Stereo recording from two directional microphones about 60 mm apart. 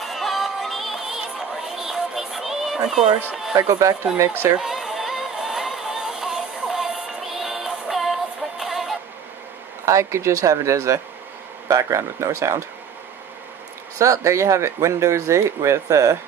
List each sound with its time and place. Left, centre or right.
0.0 s music: centre
3.5 s speech: right
4.6 s a sound: centre
9.8 s speech: right
12.0 s speech: right
13.9 s speech: right